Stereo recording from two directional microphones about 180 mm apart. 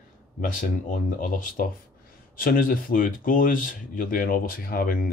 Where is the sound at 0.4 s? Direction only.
45° left (ahead or behind).